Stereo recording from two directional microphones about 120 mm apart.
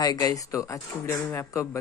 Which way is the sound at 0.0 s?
30° left (ahead or behind).